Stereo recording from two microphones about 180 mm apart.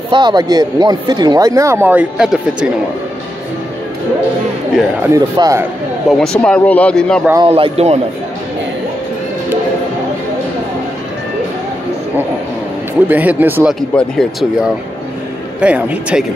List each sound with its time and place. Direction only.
0.1 s speech: 25° right (ahead or behind); by 2.7 s 5° right (ahead or behind)
5.1 s speech: 15° right (ahead or behind)
6.0 s a man's voice: 5° left (ahead or behind)
7.3 s a man's voice: 30° right (ahead or behind)
13.1 s speech: 10° right (ahead or behind)
13.7 s a man's voice: centre (ahead or behind)